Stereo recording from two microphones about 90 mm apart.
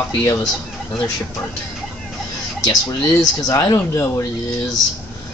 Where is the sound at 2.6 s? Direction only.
45° left (ahead or behind).